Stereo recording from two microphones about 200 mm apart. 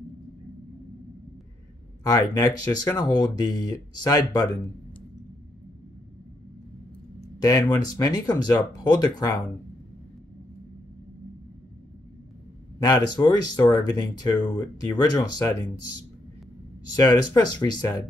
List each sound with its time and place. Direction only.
2.0 s speech: 15° left (ahead or behind)
7.3 s speech: 15° left (ahead or behind)
12.7 s speech: 20° left (ahead or behind)
16.9 s speech: 20° left (ahead or behind)